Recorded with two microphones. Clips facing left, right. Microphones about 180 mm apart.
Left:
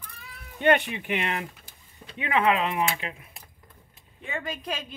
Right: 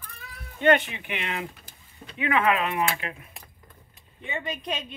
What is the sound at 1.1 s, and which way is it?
Speech, 55° left (ahead or behind).